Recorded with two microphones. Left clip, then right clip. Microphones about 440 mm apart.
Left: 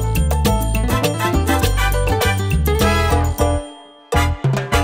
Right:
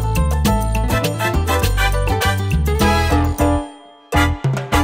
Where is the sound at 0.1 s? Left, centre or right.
Left.